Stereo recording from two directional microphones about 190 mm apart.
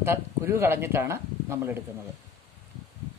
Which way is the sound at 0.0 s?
15° right (ahead or behind).